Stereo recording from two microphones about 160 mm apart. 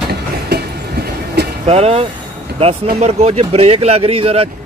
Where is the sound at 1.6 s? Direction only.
40° right (ahead or behind).